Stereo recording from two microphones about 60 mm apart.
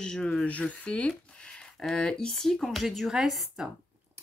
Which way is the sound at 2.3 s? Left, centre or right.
Centre.